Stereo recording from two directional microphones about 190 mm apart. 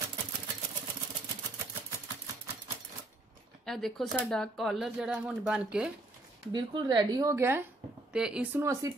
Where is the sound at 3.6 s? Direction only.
Centre (ahead or behind).